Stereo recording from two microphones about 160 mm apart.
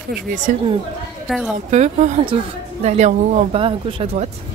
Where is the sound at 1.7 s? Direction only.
45° right (ahead or behind).